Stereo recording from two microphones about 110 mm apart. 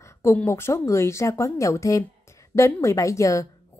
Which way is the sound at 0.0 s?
25° left (ahead or behind).